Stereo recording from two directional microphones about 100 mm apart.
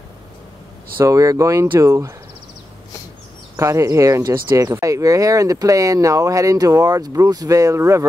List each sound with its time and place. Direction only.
0.9 s speech: 30° right (ahead or behind)
3.5 s speech: 30° right (ahead or behind)